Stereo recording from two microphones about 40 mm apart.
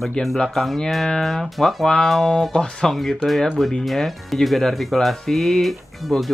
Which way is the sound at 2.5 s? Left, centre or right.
Left.